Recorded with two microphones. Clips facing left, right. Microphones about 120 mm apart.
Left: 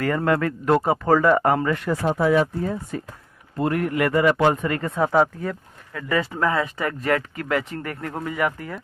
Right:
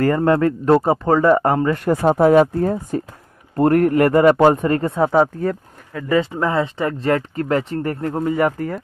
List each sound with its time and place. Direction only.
0.0 s speech: 30° right (ahead or behind)
1.8 s speech: 45° right (ahead or behind)